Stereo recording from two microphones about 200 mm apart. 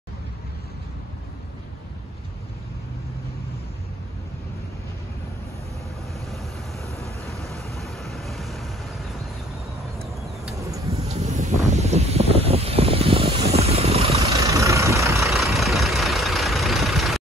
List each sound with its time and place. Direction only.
7.0 s vehicle: centre (ahead or behind)
10.9 s wind: 35° right (ahead or behind)
11.7 s a sound: 35° right (ahead or behind)
14.5 s vehicle: 15° right (ahead or behind)
15.2 s vehicle: centre (ahead or behind)